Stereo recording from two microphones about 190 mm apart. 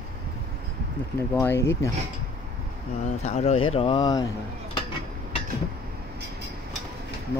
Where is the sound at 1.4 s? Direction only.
15° left (ahead or behind).